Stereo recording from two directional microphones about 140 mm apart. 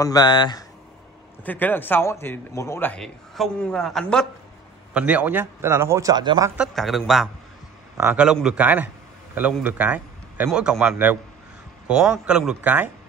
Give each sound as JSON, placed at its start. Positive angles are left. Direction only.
{"t": 0.0, "sound": "speech", "side_deg": 30}
{"t": 1.4, "sound": "a man's voice", "side_deg": 10}
{"t": 3.0, "sound": "a man's voice", "side_deg": 5}
{"t": 4.9, "sound": "speech", "side_deg": -10}
{"t": 6.7, "sound": "a man's voice", "side_deg": 0}